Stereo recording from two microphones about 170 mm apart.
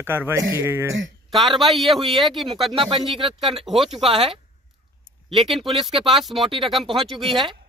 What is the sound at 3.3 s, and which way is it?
Speech, centre (ahead or behind).